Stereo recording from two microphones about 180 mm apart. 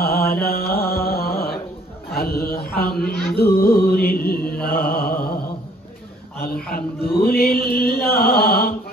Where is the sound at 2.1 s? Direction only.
60° left (ahead or behind).